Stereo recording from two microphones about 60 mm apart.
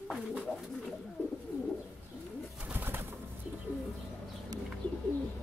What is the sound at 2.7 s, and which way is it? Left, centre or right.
Bird, right.